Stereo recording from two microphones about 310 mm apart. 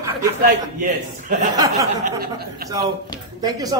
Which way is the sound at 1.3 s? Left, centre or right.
Right.